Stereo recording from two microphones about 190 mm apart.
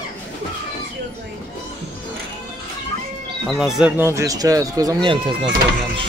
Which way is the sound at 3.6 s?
5° right (ahead or behind).